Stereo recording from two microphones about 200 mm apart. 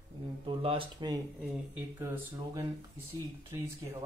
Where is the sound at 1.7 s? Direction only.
10° right (ahead or behind).